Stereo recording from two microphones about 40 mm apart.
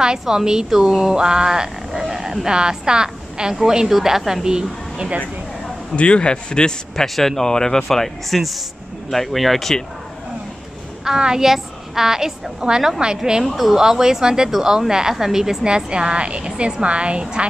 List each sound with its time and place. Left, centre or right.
0.2 s a woman's voice: centre
1.9 s a sound: centre
2.5 s a woman's voice: centre
5.9 s a man's voice: left
7.2 s speech: centre
11.1 s a woman's voice: centre
13.4 s speech: centre
13.7 s a woman's voice: centre
15.6 s a woman's voice: right